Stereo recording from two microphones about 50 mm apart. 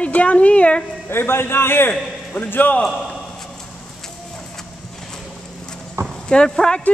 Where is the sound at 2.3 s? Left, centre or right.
Left.